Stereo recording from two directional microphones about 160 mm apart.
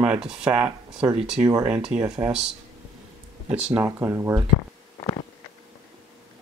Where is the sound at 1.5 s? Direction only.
15° right (ahead or behind).